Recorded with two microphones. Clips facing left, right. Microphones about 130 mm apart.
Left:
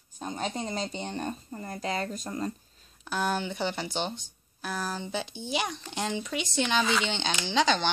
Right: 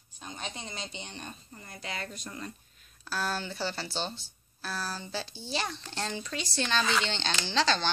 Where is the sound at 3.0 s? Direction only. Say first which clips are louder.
Left 4 dB; 20° left (ahead or behind).